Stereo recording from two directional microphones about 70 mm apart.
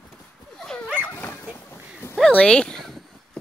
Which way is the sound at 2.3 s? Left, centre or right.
Centre.